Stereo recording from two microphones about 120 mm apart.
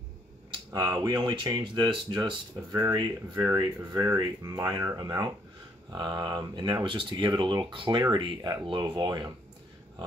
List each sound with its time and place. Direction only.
0.7 s speech: 30° right (ahead or behind)